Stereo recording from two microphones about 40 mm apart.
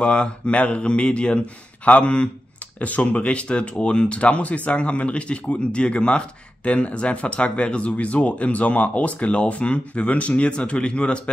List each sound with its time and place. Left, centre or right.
0.0 s speech: left